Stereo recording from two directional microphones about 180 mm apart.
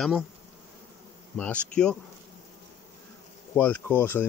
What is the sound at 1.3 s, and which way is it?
Speech, 5° left (ahead or behind).